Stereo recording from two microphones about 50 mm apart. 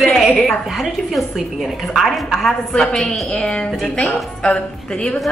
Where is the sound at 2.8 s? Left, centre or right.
Centre.